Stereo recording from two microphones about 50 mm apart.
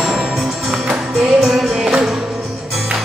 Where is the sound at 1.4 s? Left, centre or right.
Centre.